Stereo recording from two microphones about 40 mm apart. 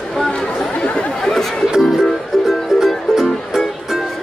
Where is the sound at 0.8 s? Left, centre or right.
Left.